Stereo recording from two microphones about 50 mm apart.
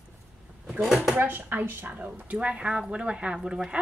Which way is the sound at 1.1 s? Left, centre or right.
Right.